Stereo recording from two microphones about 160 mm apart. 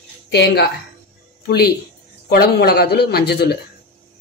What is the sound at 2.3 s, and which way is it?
Speech, 70° left (ahead or behind).